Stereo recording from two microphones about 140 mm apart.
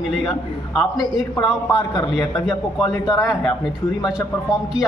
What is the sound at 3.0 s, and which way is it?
Speech, 25° left (ahead or behind).